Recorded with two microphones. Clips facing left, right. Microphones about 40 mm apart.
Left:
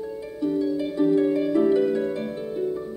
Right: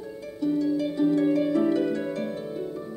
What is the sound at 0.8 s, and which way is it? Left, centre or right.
Harp, centre.